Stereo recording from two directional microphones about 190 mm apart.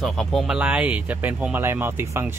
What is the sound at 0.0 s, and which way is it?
Speech, centre (ahead or behind).